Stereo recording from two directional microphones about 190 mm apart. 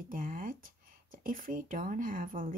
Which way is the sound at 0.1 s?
45° right (ahead or behind).